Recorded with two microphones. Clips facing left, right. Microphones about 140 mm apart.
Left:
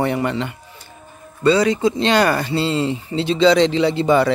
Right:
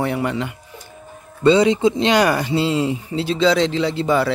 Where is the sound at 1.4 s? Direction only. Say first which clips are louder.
Right 2 dB; 25° right (ahead or behind).